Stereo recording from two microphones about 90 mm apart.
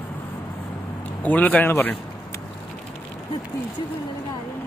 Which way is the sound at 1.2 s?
15° left (ahead or behind).